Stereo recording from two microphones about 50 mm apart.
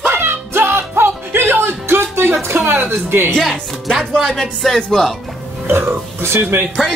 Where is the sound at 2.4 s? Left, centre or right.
Right.